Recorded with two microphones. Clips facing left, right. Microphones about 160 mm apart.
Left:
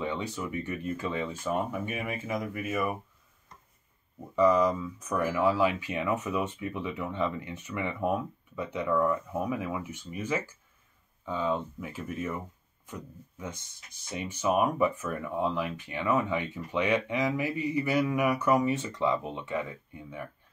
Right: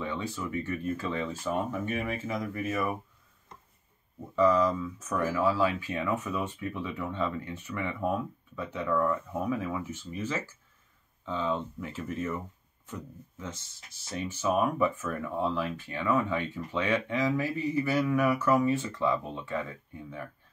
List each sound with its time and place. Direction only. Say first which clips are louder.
0.0 s speech: left 1 dB; 20° left (ahead or behind)
4.4 s speech: left 1 dB; 15° left (ahead or behind)